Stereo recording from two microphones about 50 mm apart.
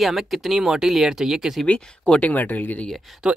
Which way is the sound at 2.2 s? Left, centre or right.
Left.